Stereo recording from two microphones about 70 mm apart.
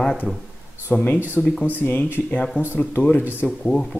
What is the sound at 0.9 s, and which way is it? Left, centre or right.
Speech, left.